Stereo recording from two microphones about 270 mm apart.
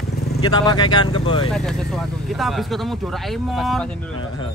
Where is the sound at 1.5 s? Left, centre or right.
Centre.